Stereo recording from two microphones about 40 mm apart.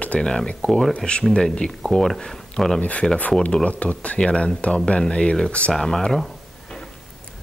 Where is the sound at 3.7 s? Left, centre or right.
Left.